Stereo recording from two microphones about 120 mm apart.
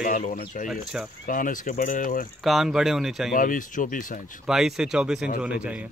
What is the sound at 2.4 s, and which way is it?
Speech, centre (ahead or behind).